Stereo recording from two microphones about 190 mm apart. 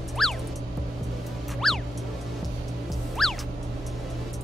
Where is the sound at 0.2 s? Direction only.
Centre (ahead or behind).